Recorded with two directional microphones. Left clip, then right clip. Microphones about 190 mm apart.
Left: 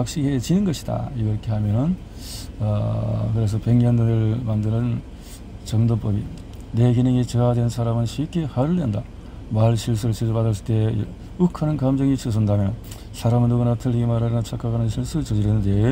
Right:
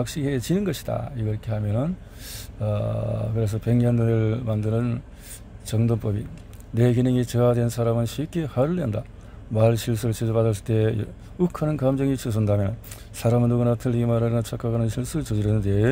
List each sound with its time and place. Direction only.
0.0 s speech: 25° right (ahead or behind)